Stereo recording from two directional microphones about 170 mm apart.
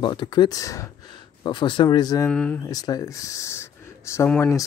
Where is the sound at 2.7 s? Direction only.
20° left (ahead or behind).